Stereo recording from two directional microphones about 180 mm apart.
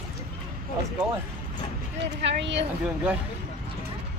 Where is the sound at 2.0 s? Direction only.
80° right.